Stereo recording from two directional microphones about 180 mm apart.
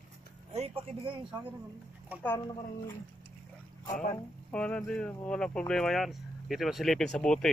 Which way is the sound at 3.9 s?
45° left (ahead or behind).